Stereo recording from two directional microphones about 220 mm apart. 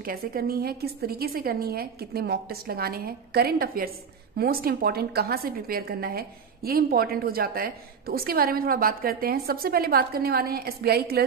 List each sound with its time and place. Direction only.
0.0 s a woman's voice: 40° right (ahead or behind)